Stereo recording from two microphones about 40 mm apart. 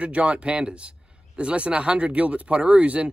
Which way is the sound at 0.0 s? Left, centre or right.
Right.